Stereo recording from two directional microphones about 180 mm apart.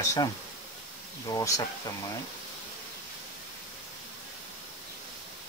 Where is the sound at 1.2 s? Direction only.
20° left (ahead or behind).